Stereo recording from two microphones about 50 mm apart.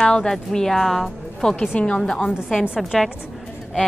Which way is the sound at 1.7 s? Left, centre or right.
Left.